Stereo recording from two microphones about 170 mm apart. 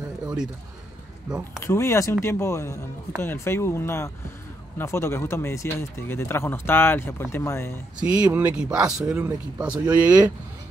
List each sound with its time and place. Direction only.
1.6 s speech: 15° left (ahead or behind)
8.0 s speech: 5° right (ahead or behind)